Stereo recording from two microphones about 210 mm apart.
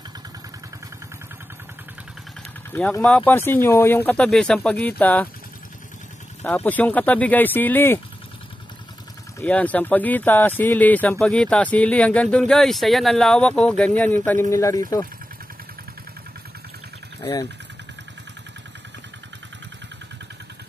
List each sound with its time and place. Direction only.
2.7 s speech: 10° left (ahead or behind)
6.4 s speech: 10° left (ahead or behind)
9.4 s speech: 5° left (ahead or behind)
17.2 s speech: 15° left (ahead or behind)